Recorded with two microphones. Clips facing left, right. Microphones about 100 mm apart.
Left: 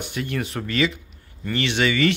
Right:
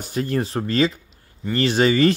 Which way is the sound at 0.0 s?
35° right (ahead or behind).